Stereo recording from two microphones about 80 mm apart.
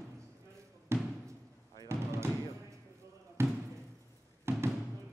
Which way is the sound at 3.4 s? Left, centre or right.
Right.